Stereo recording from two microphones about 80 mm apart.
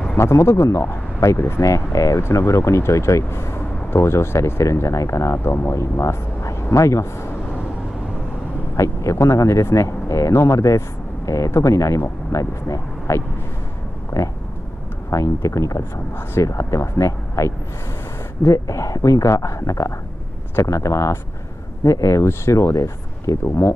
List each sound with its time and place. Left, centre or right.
0.2 s speech: left
8.7 s speech: left